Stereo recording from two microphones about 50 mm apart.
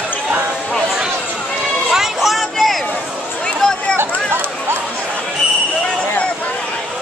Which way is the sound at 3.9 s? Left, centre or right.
Right.